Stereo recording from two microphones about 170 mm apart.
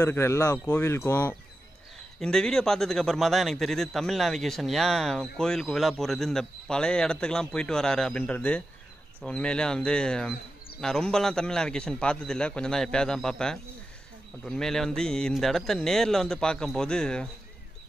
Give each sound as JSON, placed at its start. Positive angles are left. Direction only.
{"t": 0.0, "sound": "a man's voice", "side_deg": 15}